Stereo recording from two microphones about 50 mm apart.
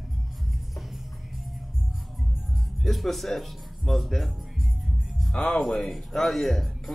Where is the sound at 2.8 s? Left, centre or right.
Centre.